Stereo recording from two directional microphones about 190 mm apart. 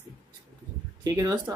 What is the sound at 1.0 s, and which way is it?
Speech, 20° right (ahead or behind).